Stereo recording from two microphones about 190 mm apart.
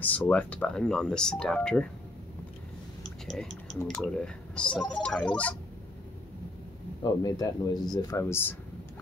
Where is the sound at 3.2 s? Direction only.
5° left (ahead or behind).